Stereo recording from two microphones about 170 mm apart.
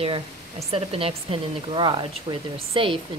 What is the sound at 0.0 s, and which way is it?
Speech, 35° right (ahead or behind).